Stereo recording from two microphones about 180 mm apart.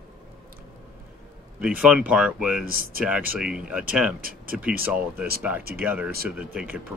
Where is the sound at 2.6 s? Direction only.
55° right (ahead or behind).